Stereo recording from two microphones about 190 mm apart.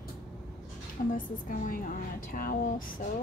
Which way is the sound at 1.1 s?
45° left (ahead or behind).